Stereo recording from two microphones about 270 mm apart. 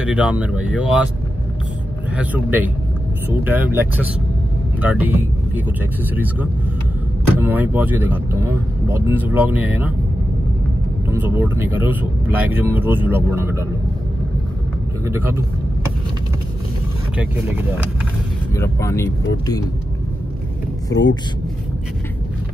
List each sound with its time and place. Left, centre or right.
0.0 s speech: centre
2.1 s speech: centre
11.1 s speech: centre
15.0 s speech: centre
18.6 s speech: centre
20.9 s speech: left